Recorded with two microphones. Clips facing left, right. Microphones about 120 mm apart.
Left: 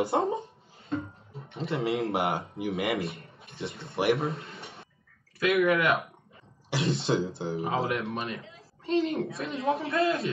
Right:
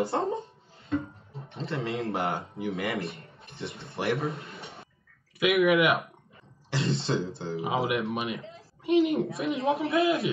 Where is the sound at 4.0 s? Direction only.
20° left (ahead or behind).